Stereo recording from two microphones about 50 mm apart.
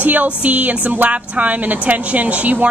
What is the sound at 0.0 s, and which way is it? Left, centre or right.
Speech, right.